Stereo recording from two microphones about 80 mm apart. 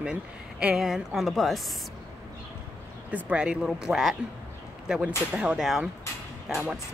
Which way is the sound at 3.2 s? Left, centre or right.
Centre.